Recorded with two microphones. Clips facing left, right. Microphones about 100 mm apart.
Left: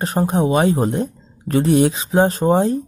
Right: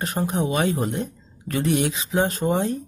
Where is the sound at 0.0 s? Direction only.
35° left (ahead or behind).